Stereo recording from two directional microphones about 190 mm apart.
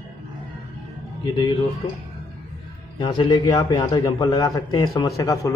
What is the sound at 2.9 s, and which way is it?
A man's voice, 25° left (ahead or behind).